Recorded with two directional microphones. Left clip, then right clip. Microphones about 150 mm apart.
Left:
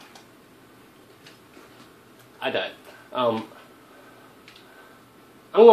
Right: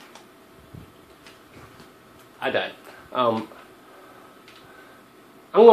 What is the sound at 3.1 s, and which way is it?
Speech, 35° right (ahead or behind).